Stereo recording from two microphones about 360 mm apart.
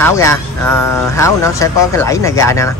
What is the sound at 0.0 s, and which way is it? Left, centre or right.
Speech, centre.